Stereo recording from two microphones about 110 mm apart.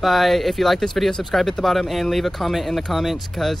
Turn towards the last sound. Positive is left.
turn(degrees=0)  # may be behind; listen again after turning